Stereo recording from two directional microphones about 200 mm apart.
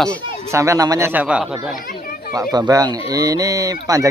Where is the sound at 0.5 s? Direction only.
15° right (ahead or behind).